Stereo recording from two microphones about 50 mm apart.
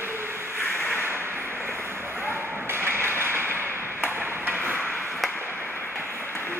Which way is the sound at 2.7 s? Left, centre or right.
Right.